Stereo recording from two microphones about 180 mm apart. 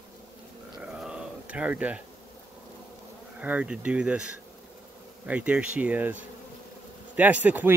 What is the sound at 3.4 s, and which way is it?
Speech, 5° right (ahead or behind).